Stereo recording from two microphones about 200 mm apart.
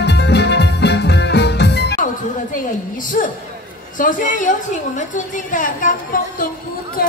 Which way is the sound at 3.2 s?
45° left (ahead or behind).